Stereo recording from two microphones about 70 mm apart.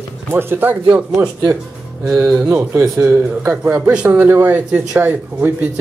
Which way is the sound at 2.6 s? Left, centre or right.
Right.